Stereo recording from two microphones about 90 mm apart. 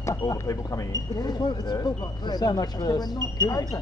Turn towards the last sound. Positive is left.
turn(degrees=45)  # may be behind; listen again after turning